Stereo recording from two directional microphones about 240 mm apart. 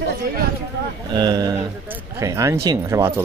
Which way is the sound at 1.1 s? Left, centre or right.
Centre.